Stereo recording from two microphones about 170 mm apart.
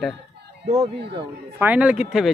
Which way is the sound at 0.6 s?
40° right (ahead or behind).